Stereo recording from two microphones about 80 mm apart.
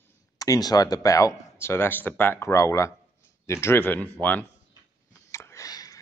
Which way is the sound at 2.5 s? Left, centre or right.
Left.